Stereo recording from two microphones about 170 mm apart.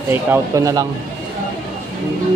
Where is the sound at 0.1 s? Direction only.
15° right (ahead or behind).